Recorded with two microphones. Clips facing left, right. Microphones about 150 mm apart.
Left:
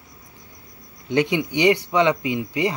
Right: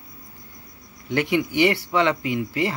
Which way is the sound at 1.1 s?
20° left (ahead or behind).